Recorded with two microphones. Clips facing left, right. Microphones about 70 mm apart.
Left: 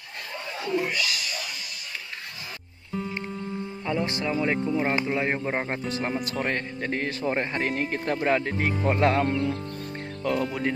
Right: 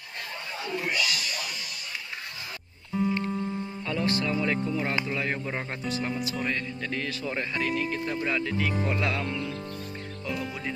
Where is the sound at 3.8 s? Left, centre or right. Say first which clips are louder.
Left 1 dB; left.